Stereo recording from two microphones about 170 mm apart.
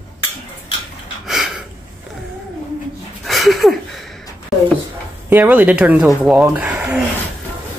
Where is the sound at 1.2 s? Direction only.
5° right (ahead or behind).